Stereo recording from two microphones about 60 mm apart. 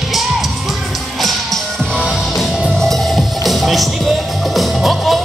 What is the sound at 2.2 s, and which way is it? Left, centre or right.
Music, centre.